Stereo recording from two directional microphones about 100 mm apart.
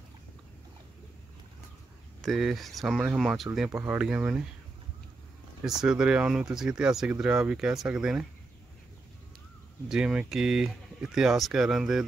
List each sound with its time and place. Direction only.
2.2 s speech: centre (ahead or behind)
3.7 s speech: 25° right (ahead or behind)
4.0 s speech: 10° right (ahead or behind)
5.7 s speech: 5° right (ahead or behind)
9.8 s speech: 10° right (ahead or behind)